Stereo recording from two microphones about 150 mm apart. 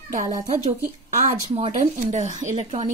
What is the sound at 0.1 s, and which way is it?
A woman's voice, 55° right (ahead or behind).